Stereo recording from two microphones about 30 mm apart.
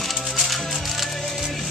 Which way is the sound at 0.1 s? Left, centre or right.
Centre.